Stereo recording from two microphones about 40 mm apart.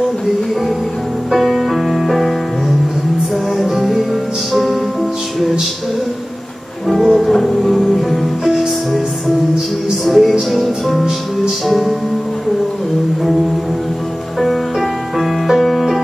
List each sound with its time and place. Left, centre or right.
1.3 s music: centre
3.5 s music: centre
7.0 s music: centre
10.0 s music: centre
14.4 s music: centre